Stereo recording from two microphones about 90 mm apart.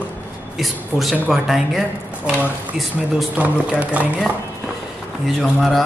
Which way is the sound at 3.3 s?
15° right (ahead or behind).